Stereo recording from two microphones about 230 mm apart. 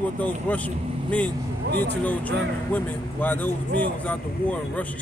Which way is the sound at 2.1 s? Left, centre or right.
Centre.